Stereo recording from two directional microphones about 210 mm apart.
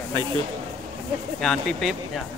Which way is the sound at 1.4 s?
Centre (ahead or behind).